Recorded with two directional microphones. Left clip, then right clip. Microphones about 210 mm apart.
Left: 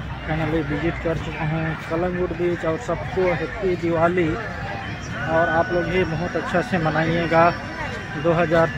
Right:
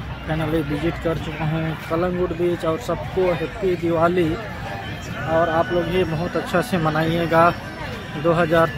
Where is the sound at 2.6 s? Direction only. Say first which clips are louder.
Right 1 dB; 15° right (ahead or behind).